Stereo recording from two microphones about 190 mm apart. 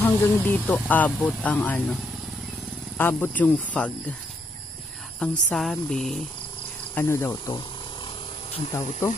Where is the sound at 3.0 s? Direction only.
10° left (ahead or behind).